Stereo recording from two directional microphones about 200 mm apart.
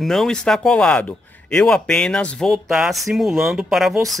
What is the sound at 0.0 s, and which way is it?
Speech, centre (ahead or behind).